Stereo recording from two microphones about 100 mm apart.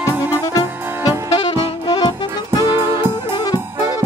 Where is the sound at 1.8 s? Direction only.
45° left (ahead or behind).